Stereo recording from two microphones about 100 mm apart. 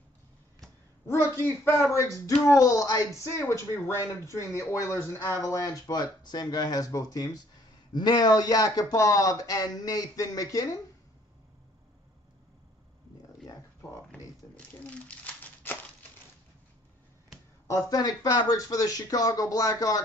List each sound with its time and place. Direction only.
1.0 s speech: 30° left (ahead or behind)
14.5 s crumpling: 15° left (ahead or behind)
17.6 s speech: 40° left (ahead or behind)